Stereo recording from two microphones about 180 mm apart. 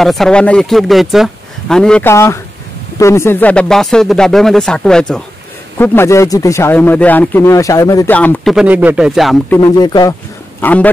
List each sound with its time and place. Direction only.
0.0 s speech: centre (ahead or behind)
5.8 s speech: 15° left (ahead or behind)
8.5 s speech: 10° right (ahead or behind)
9.5 s speech: 20° left (ahead or behind)
10.6 s a man's voice: 10° left (ahead or behind)